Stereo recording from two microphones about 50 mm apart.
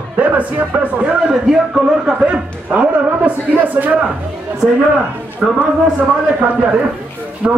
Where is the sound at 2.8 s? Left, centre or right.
Right.